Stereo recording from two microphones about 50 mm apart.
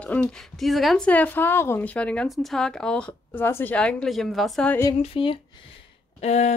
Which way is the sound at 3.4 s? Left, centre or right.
Left.